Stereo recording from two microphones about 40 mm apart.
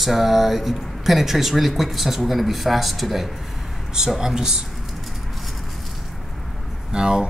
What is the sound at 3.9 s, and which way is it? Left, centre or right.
Speech, centre.